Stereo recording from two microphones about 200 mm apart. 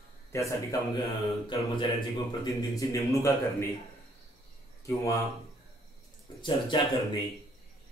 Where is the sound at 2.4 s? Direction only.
15° left (ahead or behind).